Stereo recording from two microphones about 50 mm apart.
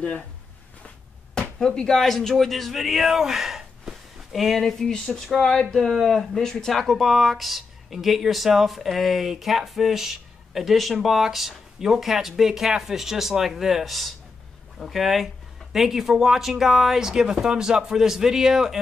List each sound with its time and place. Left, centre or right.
1.6 s speech: centre
4.6 s speech: centre